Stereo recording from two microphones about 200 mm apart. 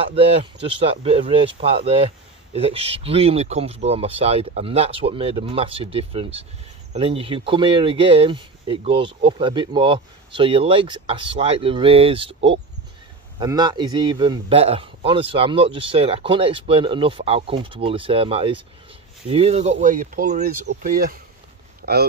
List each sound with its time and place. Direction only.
0.0 s speech: 30° right (ahead or behind); by 21.2 s 45° right (ahead or behind)